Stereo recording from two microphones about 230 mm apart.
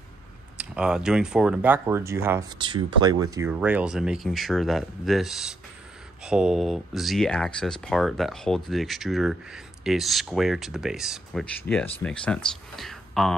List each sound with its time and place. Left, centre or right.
0.7 s speech: centre